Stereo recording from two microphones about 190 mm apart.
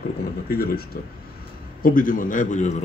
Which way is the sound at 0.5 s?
55° left (ahead or behind).